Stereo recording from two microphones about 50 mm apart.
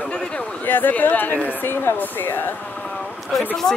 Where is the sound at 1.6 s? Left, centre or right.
Left.